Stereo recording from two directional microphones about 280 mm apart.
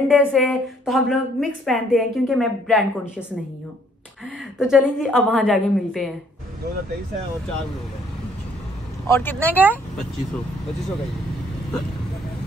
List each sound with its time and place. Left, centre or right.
0.1 s a woman's voice: centre
4.6 s a woman's voice: centre
9.0 s speech: centre